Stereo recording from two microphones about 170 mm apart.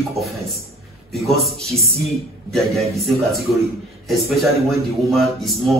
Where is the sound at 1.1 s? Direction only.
Centre (ahead or behind).